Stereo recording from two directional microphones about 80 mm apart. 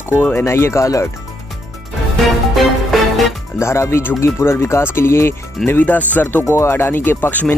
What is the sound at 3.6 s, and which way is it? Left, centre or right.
Speech, left.